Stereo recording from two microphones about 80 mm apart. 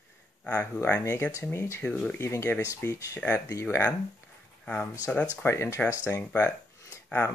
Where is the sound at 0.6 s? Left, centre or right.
Left.